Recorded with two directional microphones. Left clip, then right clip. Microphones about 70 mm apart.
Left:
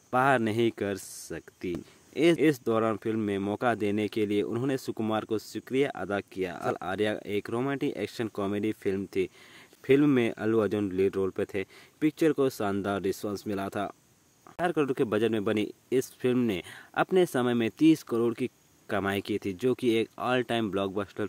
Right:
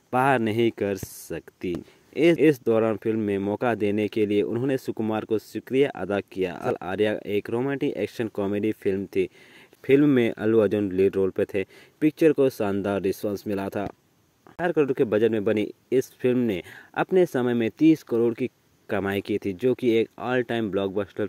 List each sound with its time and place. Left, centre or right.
0.1 s speech: right
2.1 s speech: right
6.6 s speech: right
14.6 s speech: centre